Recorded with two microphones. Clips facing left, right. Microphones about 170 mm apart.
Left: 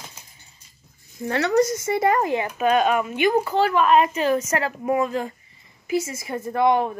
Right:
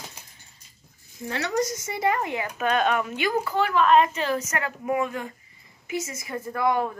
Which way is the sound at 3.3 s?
25° left (ahead or behind).